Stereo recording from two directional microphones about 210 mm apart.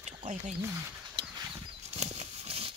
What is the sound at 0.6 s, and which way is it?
Speech, 15° right (ahead or behind).